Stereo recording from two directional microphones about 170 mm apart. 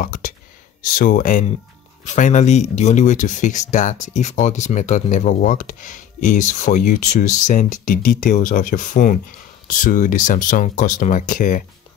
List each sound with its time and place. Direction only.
0.0 s speech: 50° left (ahead or behind)